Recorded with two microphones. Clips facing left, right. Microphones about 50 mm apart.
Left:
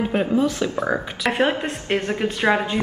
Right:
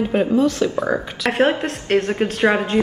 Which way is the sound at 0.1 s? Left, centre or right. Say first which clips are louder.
Right 5 dB; centre.